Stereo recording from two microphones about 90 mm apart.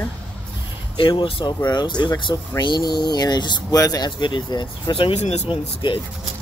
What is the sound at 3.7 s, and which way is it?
Speech, 45° left (ahead or behind).